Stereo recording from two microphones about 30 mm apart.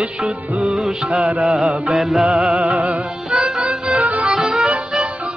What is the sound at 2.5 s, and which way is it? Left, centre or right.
Music, right.